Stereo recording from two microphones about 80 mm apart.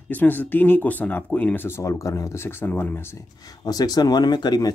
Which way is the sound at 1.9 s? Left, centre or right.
Left.